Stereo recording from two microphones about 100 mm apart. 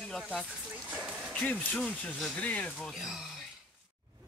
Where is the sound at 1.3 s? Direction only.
15° left (ahead or behind).